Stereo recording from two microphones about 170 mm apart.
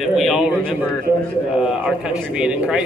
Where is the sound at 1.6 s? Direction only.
5° right (ahead or behind).